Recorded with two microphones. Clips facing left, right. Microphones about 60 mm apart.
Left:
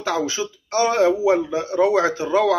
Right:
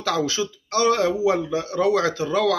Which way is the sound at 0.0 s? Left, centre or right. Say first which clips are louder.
Even; centre.